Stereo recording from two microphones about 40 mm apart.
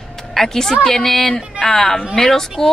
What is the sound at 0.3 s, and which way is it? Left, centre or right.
A woman's voice, centre.